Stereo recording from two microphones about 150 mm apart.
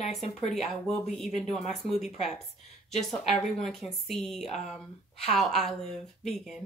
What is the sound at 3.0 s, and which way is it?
Speech, 5° left (ahead or behind).